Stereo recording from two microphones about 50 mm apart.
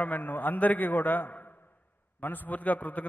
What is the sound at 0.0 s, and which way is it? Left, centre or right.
A man's voice, left.